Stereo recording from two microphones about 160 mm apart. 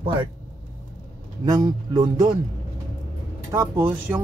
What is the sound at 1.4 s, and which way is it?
Speech, 25° right (ahead or behind).